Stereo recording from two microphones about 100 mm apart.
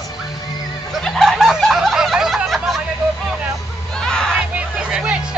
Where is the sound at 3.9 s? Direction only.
5° left (ahead or behind).